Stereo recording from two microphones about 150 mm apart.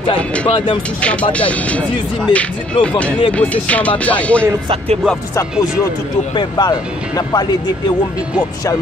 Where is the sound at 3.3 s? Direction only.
10° left (ahead or behind).